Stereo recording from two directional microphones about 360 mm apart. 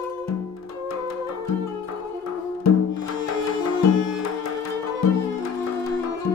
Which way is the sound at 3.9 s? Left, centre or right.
Left.